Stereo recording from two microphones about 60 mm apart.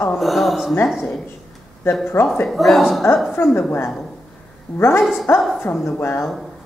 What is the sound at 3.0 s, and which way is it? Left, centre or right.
Speech, left.